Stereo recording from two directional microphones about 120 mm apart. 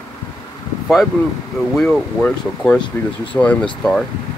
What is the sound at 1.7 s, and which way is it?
Speech, 5° left (ahead or behind).